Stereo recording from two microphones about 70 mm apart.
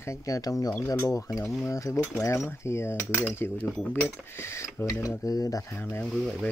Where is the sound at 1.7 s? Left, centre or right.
Left.